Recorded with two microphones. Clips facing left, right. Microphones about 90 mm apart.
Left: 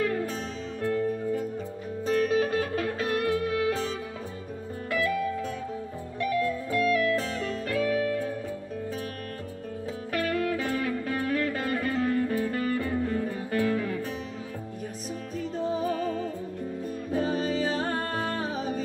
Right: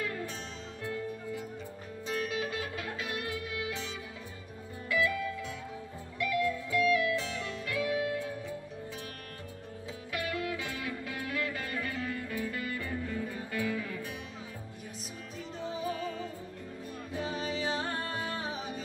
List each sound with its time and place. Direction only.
0.0 s music: 45° left (ahead or behind)
10.1 s music: 45° left (ahead or behind)
15.5 s music: 45° left (ahead or behind)